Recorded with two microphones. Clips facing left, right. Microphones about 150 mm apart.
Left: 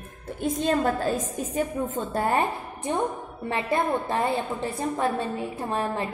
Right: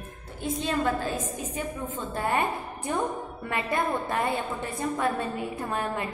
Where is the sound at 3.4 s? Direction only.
30° left (ahead or behind).